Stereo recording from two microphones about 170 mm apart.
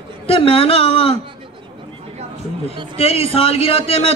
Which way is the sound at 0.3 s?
35° left (ahead or behind).